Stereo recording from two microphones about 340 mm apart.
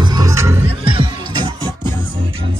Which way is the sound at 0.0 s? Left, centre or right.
Centre.